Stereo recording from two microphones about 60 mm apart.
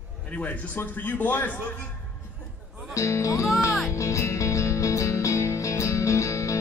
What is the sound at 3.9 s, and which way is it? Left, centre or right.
Music, left.